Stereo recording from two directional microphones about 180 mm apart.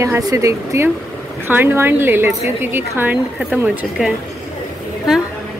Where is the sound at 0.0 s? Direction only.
15° right (ahead or behind).